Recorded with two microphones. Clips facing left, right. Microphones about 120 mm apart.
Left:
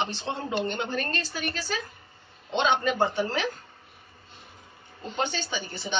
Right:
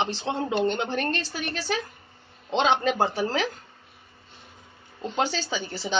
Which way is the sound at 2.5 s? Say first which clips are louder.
Right 2 dB; 90° right.